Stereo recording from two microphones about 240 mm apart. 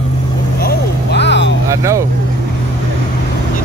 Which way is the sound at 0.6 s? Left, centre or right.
Left.